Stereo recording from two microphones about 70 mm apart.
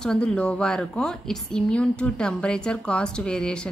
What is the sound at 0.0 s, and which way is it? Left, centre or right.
A woman's voice, centre.